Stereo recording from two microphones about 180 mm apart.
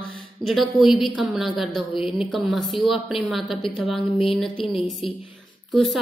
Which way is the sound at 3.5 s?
30° left (ahead or behind).